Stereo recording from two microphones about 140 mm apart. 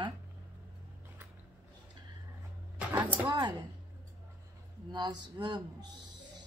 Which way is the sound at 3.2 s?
35° right (ahead or behind).